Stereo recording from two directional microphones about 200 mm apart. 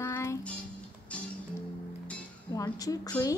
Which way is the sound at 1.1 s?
5° left (ahead or behind).